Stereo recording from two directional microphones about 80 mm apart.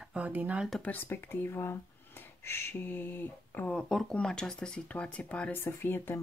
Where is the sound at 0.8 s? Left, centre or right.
Left.